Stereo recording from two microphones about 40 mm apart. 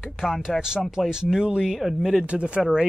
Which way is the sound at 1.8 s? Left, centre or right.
Centre.